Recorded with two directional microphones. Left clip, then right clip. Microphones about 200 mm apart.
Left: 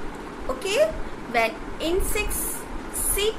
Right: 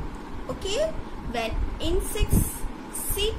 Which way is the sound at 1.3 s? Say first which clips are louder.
Left 7 dB; 15° right (ahead or behind).